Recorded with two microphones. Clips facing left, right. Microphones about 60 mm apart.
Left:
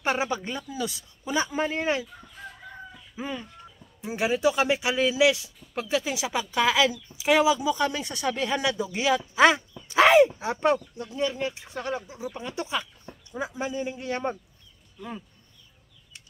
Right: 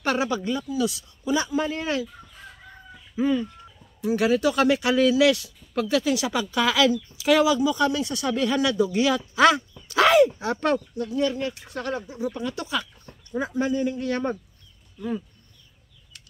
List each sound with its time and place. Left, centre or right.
0.0 s speech: left
3.2 s a man's voice: centre